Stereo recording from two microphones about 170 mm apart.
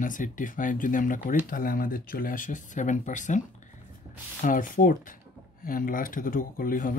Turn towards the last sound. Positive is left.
turn(degrees=55)  # may be behind; listen again after turning